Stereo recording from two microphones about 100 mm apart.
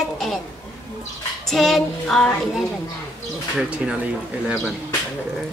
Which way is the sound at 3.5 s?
5° right (ahead or behind).